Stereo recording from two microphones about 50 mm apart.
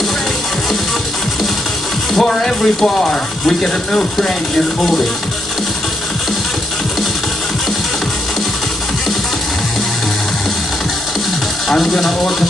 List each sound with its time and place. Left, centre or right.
2.1 s speech: centre
11.7 s speech: centre